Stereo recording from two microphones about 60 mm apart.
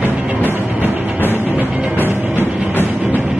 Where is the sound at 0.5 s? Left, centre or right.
Right.